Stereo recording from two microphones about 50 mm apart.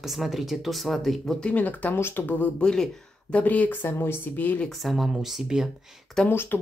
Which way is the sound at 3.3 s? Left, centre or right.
Left.